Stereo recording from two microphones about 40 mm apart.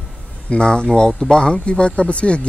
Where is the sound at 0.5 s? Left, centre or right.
Left.